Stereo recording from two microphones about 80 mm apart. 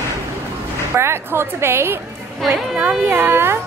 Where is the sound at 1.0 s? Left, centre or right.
Right.